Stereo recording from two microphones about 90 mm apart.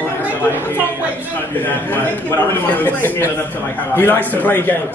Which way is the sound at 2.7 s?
25° left (ahead or behind).